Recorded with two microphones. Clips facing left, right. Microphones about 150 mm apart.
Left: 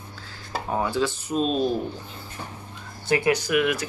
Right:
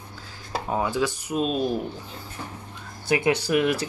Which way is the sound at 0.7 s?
15° right (ahead or behind).